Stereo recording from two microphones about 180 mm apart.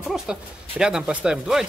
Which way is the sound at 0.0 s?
5° right (ahead or behind).